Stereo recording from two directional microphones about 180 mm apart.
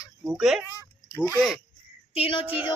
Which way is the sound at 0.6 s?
15° left (ahead or behind).